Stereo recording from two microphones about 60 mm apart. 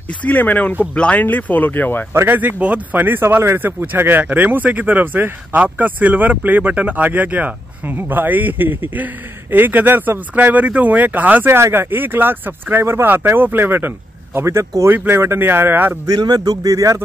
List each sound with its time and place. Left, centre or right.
0.2 s speech: left
1.2 s speech: left
2.2 s speech: right
11.4 s speech: right
14.5 s speech: right
15.0 s speech: right
16.3 s speech: right